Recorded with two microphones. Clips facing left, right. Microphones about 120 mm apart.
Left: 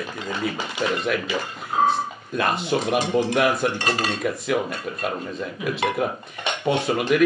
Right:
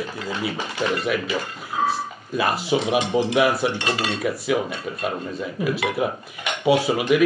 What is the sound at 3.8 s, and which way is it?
Cutlery, 40° left (ahead or behind).